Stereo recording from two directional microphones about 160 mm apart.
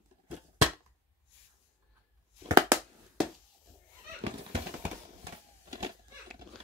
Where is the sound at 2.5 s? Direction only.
20° right (ahead or behind).